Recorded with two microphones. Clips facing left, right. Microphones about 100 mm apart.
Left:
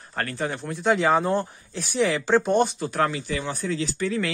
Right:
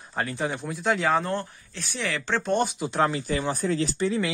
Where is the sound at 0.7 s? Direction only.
Centre (ahead or behind).